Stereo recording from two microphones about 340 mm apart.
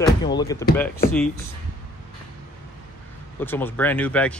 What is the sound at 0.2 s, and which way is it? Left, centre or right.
Speech, centre.